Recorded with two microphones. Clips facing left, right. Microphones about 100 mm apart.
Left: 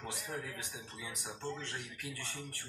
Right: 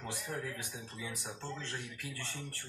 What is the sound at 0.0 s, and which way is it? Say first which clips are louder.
Speech: right 2 dB; 20° left (ahead or behind).